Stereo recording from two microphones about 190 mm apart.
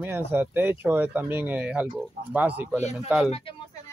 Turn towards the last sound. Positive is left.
turn(degrees=0)  # may be behind; listen again after turning